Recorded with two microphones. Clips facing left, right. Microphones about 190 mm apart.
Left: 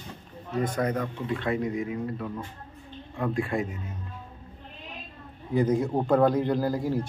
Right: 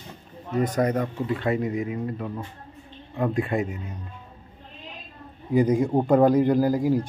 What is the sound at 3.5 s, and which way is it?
Speech, 20° right (ahead or behind).